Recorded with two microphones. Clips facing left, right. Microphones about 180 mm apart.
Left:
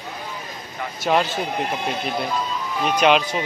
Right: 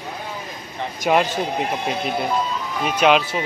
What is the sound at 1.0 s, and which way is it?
Speech, 15° right (ahead or behind).